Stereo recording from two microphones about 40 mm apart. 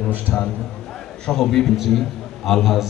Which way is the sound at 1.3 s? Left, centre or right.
Centre.